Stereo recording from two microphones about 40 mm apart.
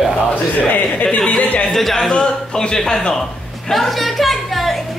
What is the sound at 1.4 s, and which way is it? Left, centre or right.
Speech, left.